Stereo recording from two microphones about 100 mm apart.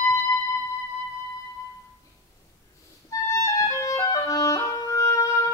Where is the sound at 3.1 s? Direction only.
35° left (ahead or behind).